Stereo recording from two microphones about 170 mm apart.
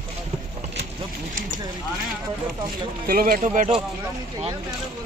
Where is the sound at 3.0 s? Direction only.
60° right (ahead or behind).